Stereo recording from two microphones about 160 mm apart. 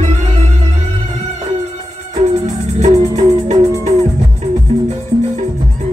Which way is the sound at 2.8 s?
45° right (ahead or behind).